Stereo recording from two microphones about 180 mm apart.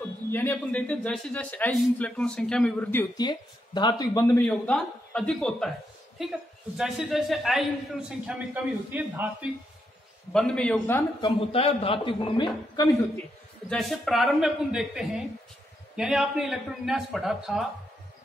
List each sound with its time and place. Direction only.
0.3 s a man's voice: 10° left (ahead or behind)
3.2 s a man's voice: 25° left (ahead or behind)
4.5 s a man's voice: 5° left (ahead or behind)
10.3 s a man's voice: 5° left (ahead or behind)
11.0 s a man's voice: 20° left (ahead or behind)
11.5 s a man's voice: 30° left (ahead or behind)
13.7 s a man's voice: centre (ahead or behind)